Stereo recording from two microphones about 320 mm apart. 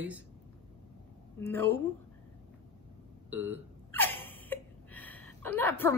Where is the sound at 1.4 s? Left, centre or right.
Centre.